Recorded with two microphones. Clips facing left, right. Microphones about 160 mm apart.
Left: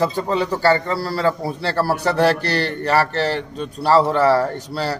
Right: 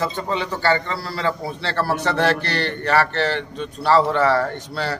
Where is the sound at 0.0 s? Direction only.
35° left (ahead or behind).